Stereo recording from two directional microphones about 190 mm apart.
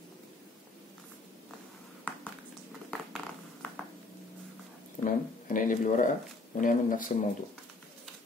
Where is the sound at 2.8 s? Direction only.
5° left (ahead or behind).